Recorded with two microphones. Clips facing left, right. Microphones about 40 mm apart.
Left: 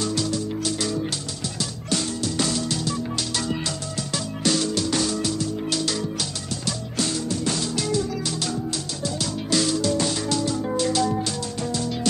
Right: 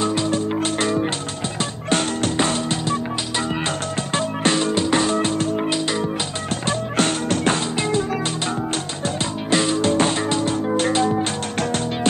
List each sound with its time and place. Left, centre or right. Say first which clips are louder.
0.0 s music: right 5 dB; right
6.6 s music: right 7 dB; right
9.0 s music: right 1 dB; right